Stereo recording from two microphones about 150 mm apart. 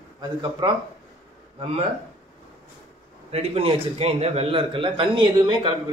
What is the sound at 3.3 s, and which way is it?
A man's voice, 45° right (ahead or behind).